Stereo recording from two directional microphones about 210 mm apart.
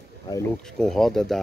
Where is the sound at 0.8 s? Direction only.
Centre (ahead or behind).